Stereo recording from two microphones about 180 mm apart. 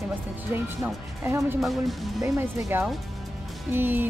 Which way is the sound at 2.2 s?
15° right (ahead or behind).